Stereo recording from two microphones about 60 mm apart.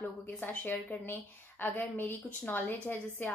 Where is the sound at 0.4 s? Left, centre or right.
Left.